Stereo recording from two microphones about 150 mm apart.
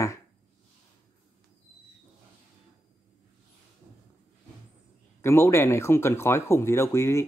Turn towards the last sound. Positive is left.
turn(degrees=20)  # may be behind; listen again after turning